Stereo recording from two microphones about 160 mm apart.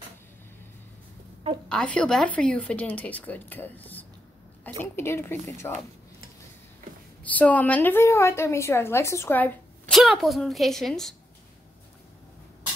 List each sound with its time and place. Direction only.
1.7 s a woman's voice: 5° left (ahead or behind)
7.2 s a woman's voice: 10° left (ahead or behind)
9.9 s a child's voice: centre (ahead or behind)